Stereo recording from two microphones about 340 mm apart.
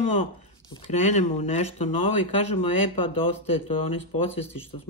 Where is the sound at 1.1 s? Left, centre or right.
Centre.